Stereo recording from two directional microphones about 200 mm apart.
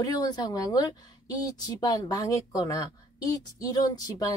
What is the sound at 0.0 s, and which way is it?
A woman's voice, 20° left (ahead or behind).